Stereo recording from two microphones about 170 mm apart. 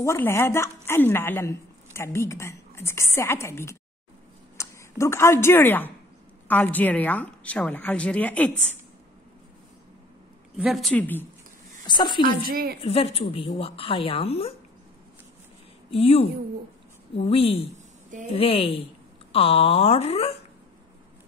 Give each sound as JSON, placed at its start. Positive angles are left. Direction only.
{"t": 0.0, "sound": "a woman's voice", "side_deg": 15}
{"t": 10.6, "sound": "a woman's voice", "side_deg": 0}
{"t": 11.8, "sound": "a woman's voice", "side_deg": 25}
{"t": 12.4, "sound": "a woman's voice", "side_deg": -60}
{"t": 12.8, "sound": "speech", "side_deg": 35}
{"t": 15.9, "sound": "speech", "side_deg": 35}